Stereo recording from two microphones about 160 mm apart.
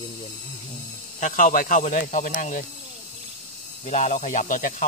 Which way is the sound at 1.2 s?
50° left (ahead or behind).